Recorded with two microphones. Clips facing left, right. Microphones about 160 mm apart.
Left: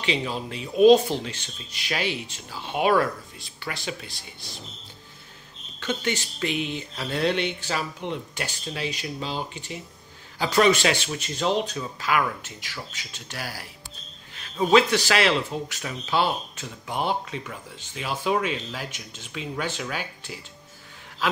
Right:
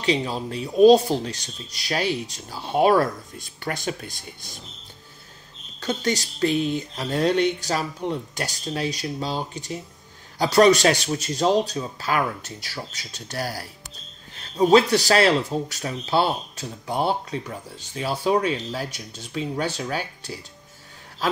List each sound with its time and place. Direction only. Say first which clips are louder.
0.0 s speech: right 4 dB; 35° right (ahead or behind)
5.8 s speech: right 3 dB; 40° right (ahead or behind)